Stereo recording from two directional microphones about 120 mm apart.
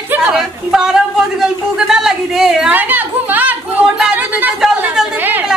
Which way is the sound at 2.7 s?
15° right (ahead or behind).